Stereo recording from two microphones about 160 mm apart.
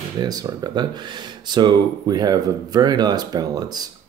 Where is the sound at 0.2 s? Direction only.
25° right (ahead or behind).